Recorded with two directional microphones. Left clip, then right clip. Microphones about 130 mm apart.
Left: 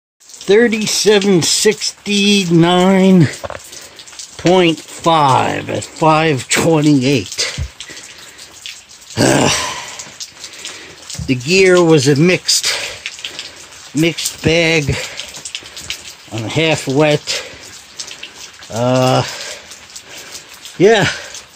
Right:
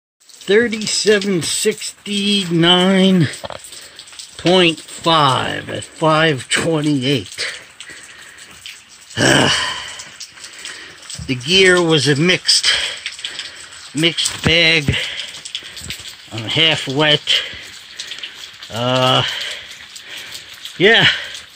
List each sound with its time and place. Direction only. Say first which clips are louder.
0.7 s speech: left 3 dB; 5° left (ahead or behind)
4.4 s speech: left 2 dB; centre (ahead or behind)
9.1 s groan: even; 5° left (ahead or behind)
11.2 s speech: left 1 dB; 5° left (ahead or behind)
13.9 s speech: even; 5° left (ahead or behind)
16.4 s speech: right 1 dB; centre (ahead or behind)
18.7 s speech: left 2 dB; 5° right (ahead or behind)
20.7 s speech: even; centre (ahead or behind)